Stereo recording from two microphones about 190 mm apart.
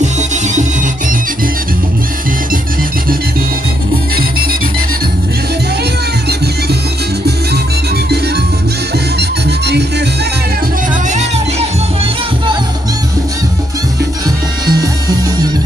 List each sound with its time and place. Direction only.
9.7 s music: 60° right (ahead or behind)
14.7 s music: 20° right (ahead or behind)